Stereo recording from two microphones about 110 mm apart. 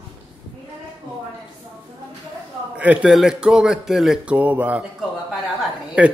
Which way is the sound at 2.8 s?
10° right (ahead or behind).